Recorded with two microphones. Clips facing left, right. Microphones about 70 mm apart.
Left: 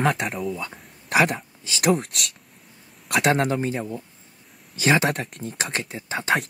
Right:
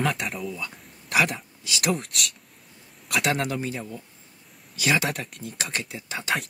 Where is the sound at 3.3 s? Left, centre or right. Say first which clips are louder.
Left 7 dB; left.